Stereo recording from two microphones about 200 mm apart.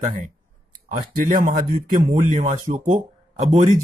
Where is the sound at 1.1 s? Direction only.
45° right (ahead or behind).